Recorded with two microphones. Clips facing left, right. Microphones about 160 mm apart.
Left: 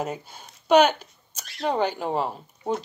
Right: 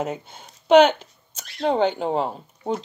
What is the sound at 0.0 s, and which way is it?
Speech, 25° right (ahead or behind).